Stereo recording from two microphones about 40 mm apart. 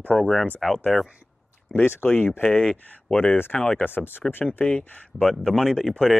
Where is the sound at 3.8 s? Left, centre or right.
Left.